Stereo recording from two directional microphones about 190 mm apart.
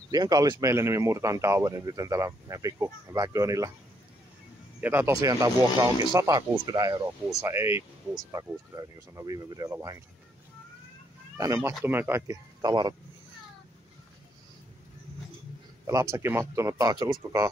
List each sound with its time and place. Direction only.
0.1 s speech: 20° right (ahead or behind)
4.7 s speech: 10° right (ahead or behind)
11.3 s speech: 15° right (ahead or behind)
15.9 s speech: 15° right (ahead or behind)